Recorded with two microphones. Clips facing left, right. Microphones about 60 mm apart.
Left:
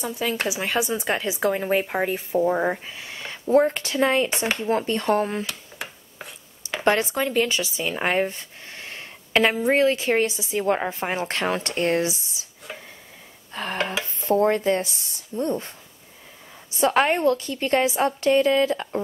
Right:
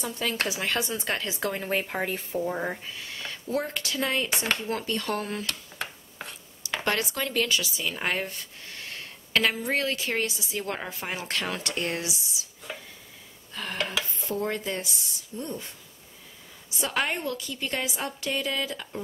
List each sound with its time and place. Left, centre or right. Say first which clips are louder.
0.0 s speech: left 4 dB; centre
2.3 s speech: left 10 dB; left
6.8 s speech: left 8 dB; left
12.7 s a sound: left 1 dB; centre
13.5 s a sound: left 5 dB; left
13.7 s speech: left 3 dB; left
14.2 s a woman's voice: left 13 dB; left
16.8 s a woman's voice: left 10 dB; left